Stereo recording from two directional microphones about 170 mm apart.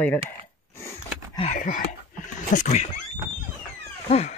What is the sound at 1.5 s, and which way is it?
Speech, 50° left (ahead or behind).